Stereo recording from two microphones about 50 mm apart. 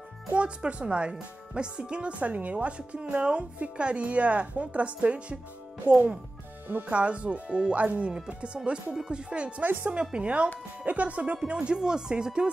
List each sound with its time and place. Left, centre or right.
0.3 s speech: right